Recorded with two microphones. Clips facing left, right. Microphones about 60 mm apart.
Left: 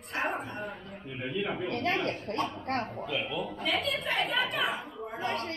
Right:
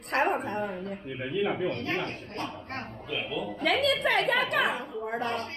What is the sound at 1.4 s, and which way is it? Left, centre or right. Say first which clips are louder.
Speech: right 6 dB; centre.